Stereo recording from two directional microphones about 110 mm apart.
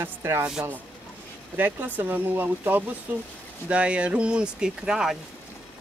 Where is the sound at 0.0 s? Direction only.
20° right (ahead or behind).